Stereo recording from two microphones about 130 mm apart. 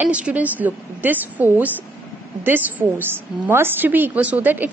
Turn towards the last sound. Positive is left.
turn(degrees=-15)  # may be behind; listen again after turning